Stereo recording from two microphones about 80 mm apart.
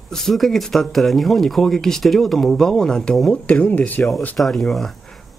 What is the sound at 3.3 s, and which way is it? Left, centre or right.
Speech, centre.